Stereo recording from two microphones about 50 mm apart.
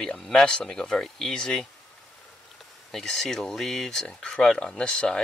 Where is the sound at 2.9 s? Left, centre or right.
Centre.